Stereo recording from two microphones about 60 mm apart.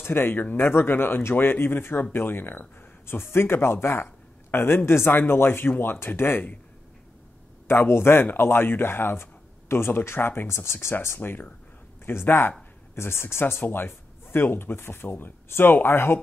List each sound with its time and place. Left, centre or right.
0.0 s speech: left
7.6 s speech: left
11.1 s speech: left
12.1 s speech: left